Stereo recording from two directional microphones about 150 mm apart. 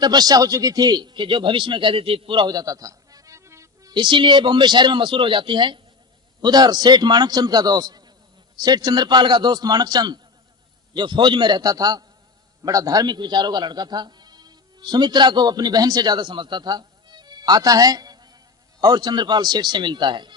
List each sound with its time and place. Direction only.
0.0 s a man's voice: 25° right (ahead or behind)